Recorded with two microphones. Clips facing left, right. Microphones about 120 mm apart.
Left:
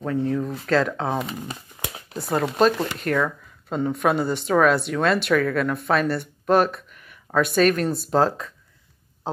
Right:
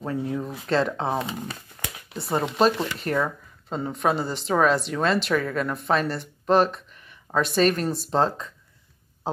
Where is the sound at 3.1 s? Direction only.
15° right (ahead or behind).